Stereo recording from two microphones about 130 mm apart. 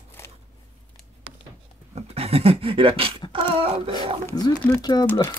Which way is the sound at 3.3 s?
45° right (ahead or behind).